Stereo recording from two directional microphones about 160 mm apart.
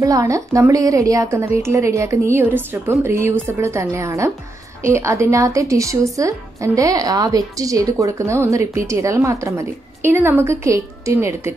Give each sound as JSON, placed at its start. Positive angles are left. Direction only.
{"t": 0.0, "sound": "a woman's voice", "side_deg": -20}